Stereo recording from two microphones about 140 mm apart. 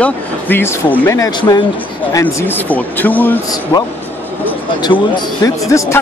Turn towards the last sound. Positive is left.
turn(degrees=20)  # may be behind; listen again after turning